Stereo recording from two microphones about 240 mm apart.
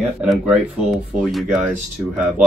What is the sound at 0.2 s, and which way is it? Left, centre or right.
Speech, centre.